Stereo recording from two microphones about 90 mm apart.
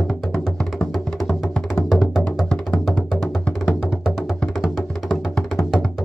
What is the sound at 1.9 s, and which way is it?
Music, centre (ahead or behind).